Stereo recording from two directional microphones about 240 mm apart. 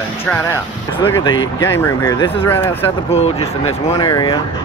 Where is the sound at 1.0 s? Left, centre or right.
Centre.